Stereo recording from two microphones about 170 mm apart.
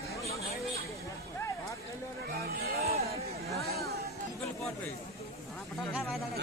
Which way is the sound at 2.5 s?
60° right (ahead or behind).